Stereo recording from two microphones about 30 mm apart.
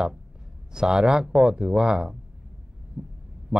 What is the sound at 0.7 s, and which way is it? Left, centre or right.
A man's voice, right.